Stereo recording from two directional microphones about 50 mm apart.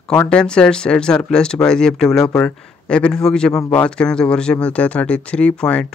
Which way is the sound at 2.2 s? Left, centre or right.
Left.